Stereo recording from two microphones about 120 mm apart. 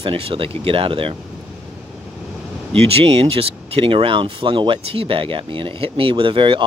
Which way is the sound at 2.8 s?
55° right (ahead or behind).